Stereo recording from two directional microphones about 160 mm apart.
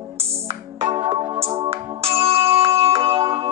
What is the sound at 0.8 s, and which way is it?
Music, 35° right (ahead or behind).